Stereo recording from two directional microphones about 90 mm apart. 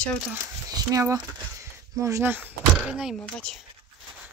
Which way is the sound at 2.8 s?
10° right (ahead or behind).